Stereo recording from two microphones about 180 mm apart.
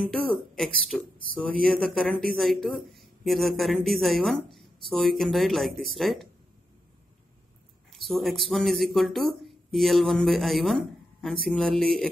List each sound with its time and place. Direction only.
0.3 s a woman's voice: 5° left (ahead or behind)
7.9 s a woman's voice: centre (ahead or behind)